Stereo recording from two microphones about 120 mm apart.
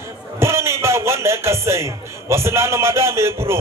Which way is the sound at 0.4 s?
20° right (ahead or behind).